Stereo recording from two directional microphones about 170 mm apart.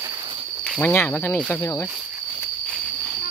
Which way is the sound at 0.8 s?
10° left (ahead or behind).